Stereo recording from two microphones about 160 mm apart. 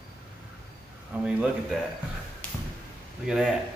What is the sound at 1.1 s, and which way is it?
Speech, 10° right (ahead or behind).